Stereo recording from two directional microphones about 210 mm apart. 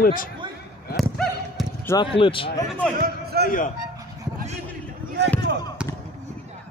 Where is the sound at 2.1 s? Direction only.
25° left (ahead or behind).